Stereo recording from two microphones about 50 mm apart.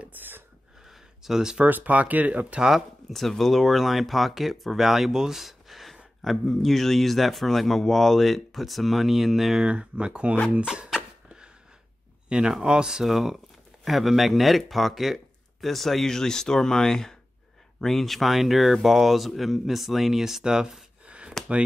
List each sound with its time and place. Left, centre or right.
0.2 s a sound: right
0.8 s a sound: centre
1.7 s speech: right
3.1 s speech: centre
9.7 s speech: centre
12.3 s speech: centre
21.4 s chop: centre